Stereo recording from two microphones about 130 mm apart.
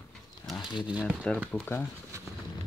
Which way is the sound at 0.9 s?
10° right (ahead or behind).